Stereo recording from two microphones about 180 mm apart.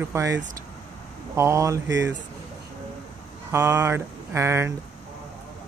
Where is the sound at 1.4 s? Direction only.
15° right (ahead or behind).